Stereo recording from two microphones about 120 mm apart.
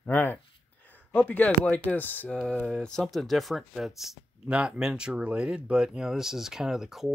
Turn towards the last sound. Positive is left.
turn(degrees=-5)  # may be behind; listen again after turning